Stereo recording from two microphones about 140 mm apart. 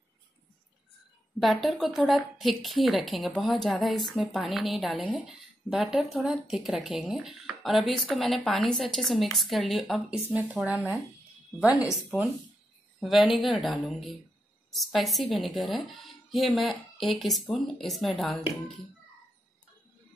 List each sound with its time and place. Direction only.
1.4 s speech: centre (ahead or behind)